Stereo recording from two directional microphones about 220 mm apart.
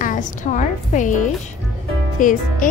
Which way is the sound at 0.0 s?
35° left (ahead or behind).